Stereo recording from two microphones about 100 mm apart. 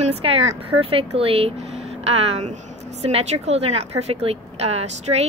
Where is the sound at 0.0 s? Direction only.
80° right.